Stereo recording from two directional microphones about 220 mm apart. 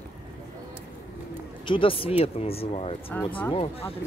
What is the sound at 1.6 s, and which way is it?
Speech, 25° left (ahead or behind).